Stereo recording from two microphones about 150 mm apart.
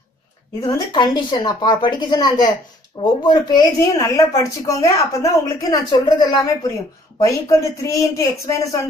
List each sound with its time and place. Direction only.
0.6 s speech: 25° left (ahead or behind)